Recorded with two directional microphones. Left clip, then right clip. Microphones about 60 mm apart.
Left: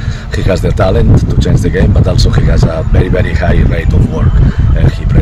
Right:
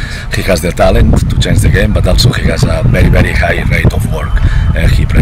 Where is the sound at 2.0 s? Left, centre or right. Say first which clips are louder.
Right 2 dB; left.